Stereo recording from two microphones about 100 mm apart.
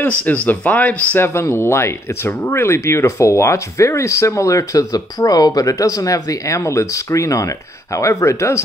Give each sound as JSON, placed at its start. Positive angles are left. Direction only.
{"t": 0.0, "sound": "speech", "side_deg": 15}